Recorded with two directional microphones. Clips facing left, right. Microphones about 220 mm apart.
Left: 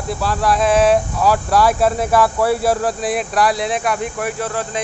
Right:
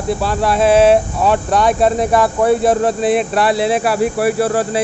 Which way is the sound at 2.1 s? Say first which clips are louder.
Right 3 dB; 20° right (ahead or behind).